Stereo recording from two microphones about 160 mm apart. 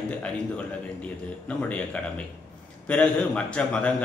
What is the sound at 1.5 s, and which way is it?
A man's voice, 10° left (ahead or behind).